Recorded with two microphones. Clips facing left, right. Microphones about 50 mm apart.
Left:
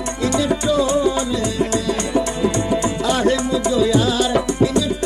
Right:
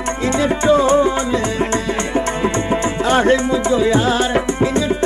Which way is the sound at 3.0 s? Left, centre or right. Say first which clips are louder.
Right 7 dB; right.